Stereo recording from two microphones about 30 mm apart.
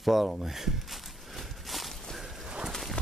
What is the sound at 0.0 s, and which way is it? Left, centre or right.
Walk, centre.